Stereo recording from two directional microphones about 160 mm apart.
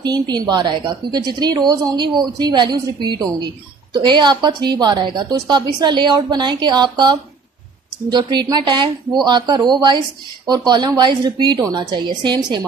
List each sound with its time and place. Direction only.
0.0 s a woman's voice: 25° right (ahead or behind)